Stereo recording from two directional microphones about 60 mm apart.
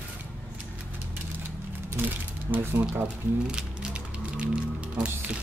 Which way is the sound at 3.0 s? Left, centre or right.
Centre.